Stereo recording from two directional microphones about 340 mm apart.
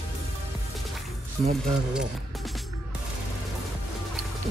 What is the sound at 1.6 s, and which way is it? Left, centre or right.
Speech, centre.